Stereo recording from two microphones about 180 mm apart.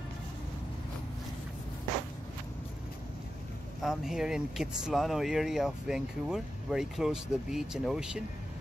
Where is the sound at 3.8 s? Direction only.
Centre (ahead or behind).